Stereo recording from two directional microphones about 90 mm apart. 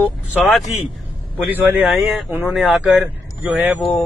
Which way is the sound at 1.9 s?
10° right (ahead or behind).